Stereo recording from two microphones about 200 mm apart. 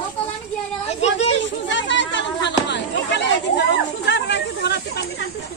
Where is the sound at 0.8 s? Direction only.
35° left (ahead or behind).